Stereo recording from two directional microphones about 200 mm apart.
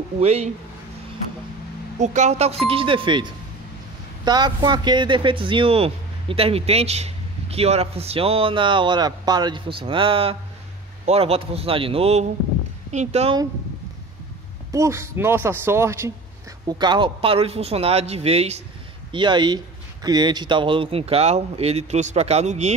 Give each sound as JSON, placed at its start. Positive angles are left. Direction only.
{"t": 0.2, "sound": "speech", "side_deg": -30}
{"t": 2.0, "sound": "a man's voice", "side_deg": -35}
{"t": 14.7, "sound": "a man's voice", "side_deg": -15}